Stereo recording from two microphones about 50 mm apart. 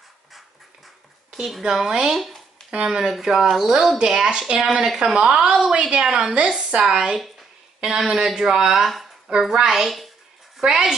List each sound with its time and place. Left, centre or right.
1.3 s speech: centre
2.7 s a woman's voice: centre
7.2 s a sound: centre
8.0 s speech: centre